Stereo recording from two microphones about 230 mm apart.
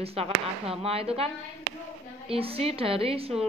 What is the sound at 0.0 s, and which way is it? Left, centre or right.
A woman's voice, right.